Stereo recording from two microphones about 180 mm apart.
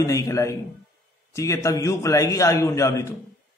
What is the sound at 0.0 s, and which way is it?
A man's voice, 15° left (ahead or behind).